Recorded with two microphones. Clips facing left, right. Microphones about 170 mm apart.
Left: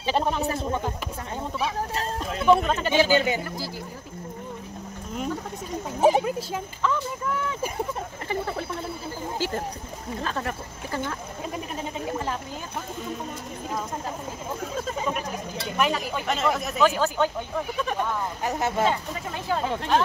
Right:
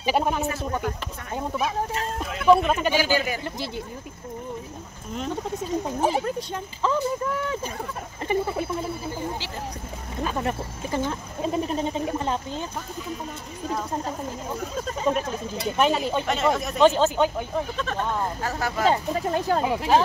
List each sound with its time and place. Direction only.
0.0 s speech: 10° right (ahead or behind)
2.4 s speech: centre (ahead or behind)
2.9 s speech: 25° left (ahead or behind)
6.0 s speech: 10° left (ahead or behind)
6.8 s speech: 30° right (ahead or behind)
8.3 s frog: 15° right (ahead or behind)
10.2 s speech: 15° right (ahead or behind)
15.1 s speech: 35° right (ahead or behind)
16.3 s speech: centre (ahead or behind)
16.8 s speech: 25° right (ahead or behind)
17.7 s speech: 15° left (ahead or behind)
18.9 s speech: 40° right (ahead or behind)
19.6 s frog: 10° right (ahead or behind)